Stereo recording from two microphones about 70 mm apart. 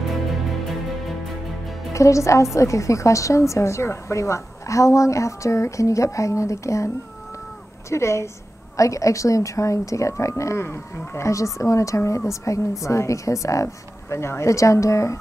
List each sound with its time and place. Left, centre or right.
0.1 s music: centre
1.9 s a woman's voice: left
7.9 s a woman's voice: left